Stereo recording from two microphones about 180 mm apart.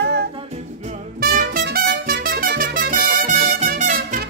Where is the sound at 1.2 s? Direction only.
60° right (ahead or behind).